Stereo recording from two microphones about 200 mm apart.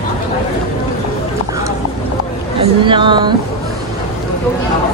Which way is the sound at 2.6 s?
25° right (ahead or behind).